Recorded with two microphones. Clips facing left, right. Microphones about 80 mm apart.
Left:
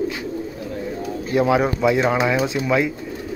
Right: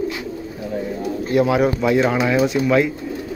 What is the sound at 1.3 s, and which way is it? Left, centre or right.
Speech, left.